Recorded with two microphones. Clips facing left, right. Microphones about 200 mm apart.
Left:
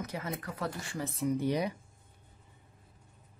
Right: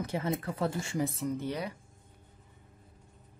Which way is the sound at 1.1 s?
10° left (ahead or behind).